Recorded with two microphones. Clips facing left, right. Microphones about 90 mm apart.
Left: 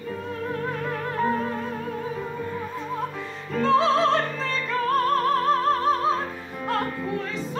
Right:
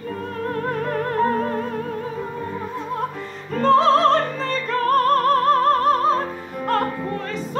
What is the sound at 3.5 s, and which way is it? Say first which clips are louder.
Music: right 5 dB; 55° right (ahead or behind).